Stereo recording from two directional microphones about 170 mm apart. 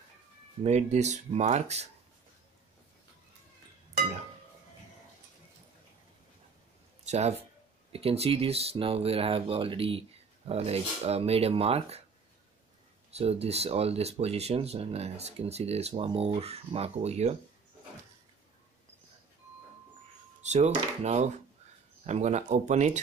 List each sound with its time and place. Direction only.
0.7 s speech: 40° right (ahead or behind)
7.1 s speech: 40° right (ahead or behind)
13.1 s speech: 35° right (ahead or behind)
20.4 s speech: 40° right (ahead or behind)